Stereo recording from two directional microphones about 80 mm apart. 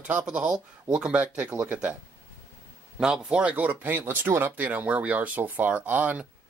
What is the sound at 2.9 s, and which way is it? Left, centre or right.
Speech, centre.